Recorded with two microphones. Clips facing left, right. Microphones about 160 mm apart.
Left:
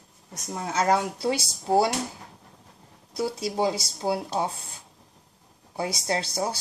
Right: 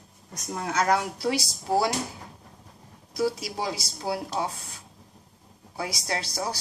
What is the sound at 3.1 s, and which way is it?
Speech, 25° left (ahead or behind).